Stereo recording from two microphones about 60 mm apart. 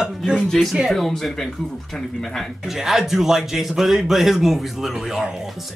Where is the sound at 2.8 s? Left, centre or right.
Centre.